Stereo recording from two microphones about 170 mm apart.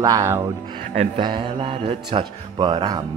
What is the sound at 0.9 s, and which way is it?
Speech, 30° right (ahead or behind).